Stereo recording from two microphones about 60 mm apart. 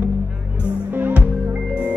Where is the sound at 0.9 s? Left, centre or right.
Right.